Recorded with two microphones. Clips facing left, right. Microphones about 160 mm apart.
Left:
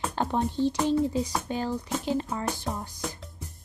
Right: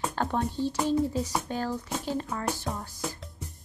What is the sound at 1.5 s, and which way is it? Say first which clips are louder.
Speech: left 2 dB; 15° left (ahead or behind).